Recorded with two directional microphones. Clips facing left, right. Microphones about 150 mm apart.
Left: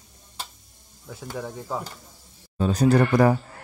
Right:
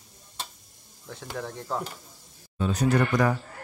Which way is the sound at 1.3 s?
5° left (ahead or behind).